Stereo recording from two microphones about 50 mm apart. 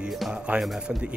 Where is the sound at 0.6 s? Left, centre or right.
Centre.